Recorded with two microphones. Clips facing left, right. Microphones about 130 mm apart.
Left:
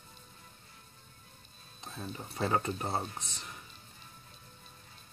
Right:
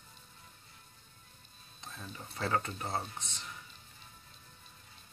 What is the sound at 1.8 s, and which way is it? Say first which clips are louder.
Speech: left 5 dB; 25° left (ahead or behind).